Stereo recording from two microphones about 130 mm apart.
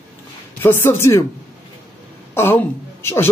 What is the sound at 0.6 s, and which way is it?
Speech, 15° left (ahead or behind).